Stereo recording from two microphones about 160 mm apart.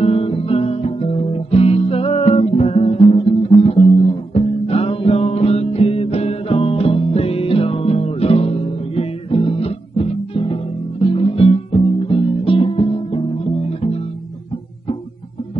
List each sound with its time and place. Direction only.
0.0 s music: 35° left (ahead or behind)